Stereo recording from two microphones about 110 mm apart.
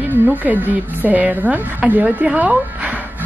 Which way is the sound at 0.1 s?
15° right (ahead or behind).